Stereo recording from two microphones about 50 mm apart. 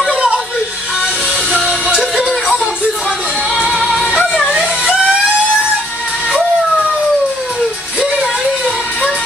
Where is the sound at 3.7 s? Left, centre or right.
Centre.